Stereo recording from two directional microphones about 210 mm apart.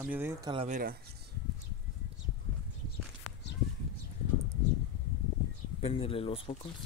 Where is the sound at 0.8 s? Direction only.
45° right (ahead or behind).